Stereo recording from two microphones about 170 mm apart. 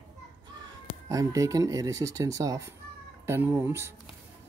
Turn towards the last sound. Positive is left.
turn(degrees=-15)  # may be behind; listen again after turning